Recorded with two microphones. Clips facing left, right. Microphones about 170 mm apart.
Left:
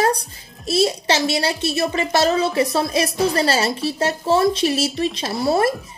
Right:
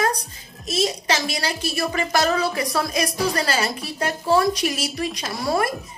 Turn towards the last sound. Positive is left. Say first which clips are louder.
# left 4 dB
turn(degrees=30)  # may be behind; listen again after turning